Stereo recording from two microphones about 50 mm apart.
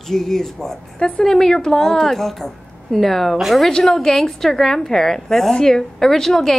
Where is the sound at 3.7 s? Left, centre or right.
Centre.